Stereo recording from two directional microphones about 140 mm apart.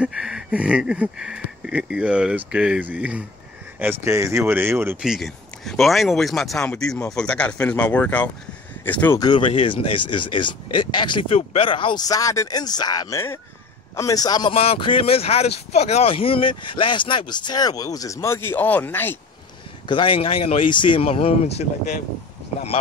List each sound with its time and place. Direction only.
0.0 s speech: 5° right (ahead or behind)
5.0 s speech: centre (ahead or behind)
9.2 s a man's voice: 35° left (ahead or behind)
14.5 s speech: 45° left (ahead or behind); by 19.1 s 15° left (ahead or behind)
19.9 s speech: 40° left (ahead or behind)
20.7 s speech: 35° left (ahead or behind)